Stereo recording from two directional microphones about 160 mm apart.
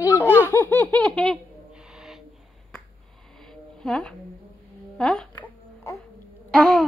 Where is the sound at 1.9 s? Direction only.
Centre (ahead or behind).